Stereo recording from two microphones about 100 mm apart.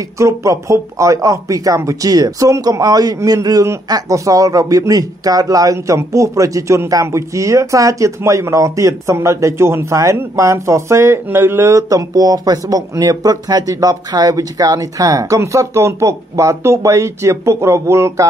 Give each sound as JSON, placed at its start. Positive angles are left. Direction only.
{"t": 0.2, "sound": "speech", "side_deg": -30}